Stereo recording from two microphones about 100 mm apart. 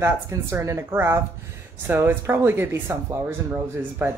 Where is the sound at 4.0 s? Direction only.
25° right (ahead or behind).